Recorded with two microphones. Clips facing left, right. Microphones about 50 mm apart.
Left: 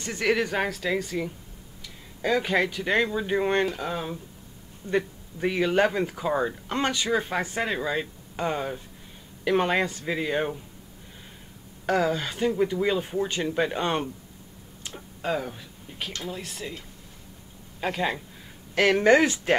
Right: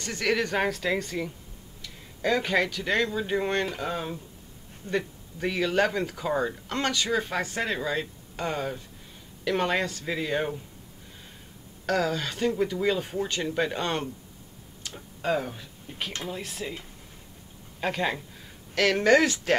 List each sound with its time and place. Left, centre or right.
0.0 s speech: centre
3.6 s speech: centre
4.8 s speech: right
5.4 s speech: centre
11.8 s speech: centre
15.0 s speech: centre
17.7 s speech: centre
18.8 s speech: centre